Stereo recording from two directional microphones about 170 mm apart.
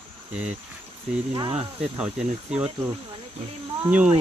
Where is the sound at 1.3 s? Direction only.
25° right (ahead or behind).